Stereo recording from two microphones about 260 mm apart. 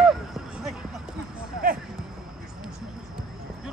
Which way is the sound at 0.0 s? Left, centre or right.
Centre.